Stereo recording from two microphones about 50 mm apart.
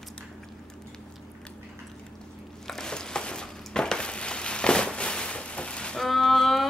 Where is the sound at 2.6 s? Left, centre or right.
Centre.